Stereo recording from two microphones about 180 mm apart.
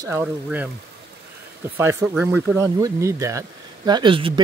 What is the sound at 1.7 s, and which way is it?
Speech, 10° right (ahead or behind).